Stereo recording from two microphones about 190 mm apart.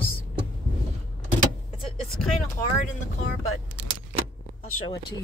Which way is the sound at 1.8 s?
Centre (ahead or behind).